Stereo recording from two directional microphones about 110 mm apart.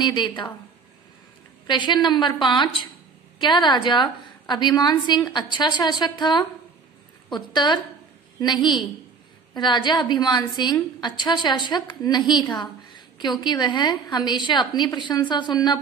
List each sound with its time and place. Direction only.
0.0 s a woman's voice: 45° left (ahead or behind)
1.7 s a woman's voice: 45° left (ahead or behind)
9.5 s a woman's voice: 45° left (ahead or behind)